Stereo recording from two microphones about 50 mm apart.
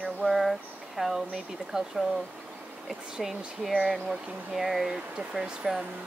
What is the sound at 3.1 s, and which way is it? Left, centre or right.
Speech, centre.